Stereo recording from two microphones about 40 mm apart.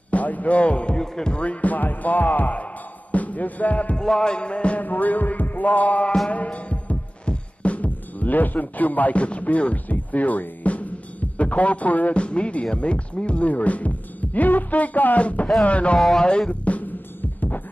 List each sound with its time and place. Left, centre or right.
0.1 s speech: left
0.9 s speech: centre
1.3 s speech: left
3.9 s speech: centre
4.8 s speech: left
6.3 s music: left
9.2 s drum: left
12.1 s speech: left
16.2 s speech: centre
16.6 s drum: left